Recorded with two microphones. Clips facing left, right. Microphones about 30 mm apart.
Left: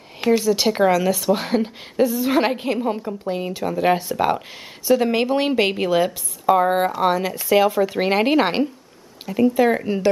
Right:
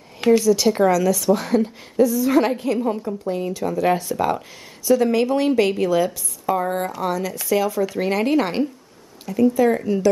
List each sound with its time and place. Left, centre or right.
0.4 s a woman's voice: left